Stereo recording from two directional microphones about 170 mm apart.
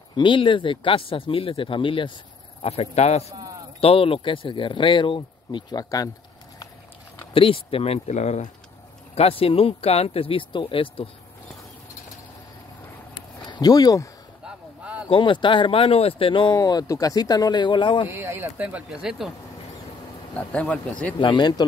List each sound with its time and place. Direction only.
0.1 s speech: 30° left (ahead or behind)
3.3 s a sound: 20° right (ahead or behind)
3.8 s speech: 35° left (ahead or behind)
7.3 s speech: 30° left (ahead or behind)
13.1 s a sound: 25° left (ahead or behind)
14.4 s vehicle: 5° right (ahead or behind)
15.0 s speech: 30° left (ahead or behind)
18.1 s speech: 15° right (ahead or behind)
20.3 s speech: 10° left (ahead or behind)
21.2 s speech: 25° left (ahead or behind)